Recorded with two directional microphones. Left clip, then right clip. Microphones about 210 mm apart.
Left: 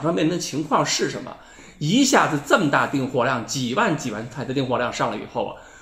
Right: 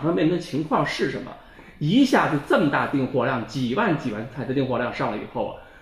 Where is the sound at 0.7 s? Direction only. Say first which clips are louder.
Left 2 dB; 15° left (ahead or behind).